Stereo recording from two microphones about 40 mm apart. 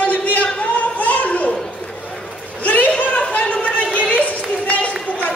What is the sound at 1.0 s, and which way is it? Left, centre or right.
Children playing, left.